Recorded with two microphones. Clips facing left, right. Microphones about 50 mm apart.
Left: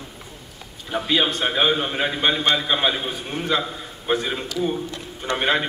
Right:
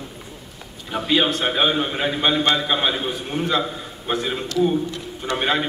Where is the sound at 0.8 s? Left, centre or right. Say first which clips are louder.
Right 1 dB; centre.